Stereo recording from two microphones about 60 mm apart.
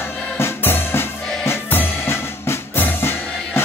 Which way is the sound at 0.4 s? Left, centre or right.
Left.